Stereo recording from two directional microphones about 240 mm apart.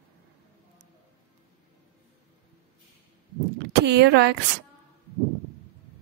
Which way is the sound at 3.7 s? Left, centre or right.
Right.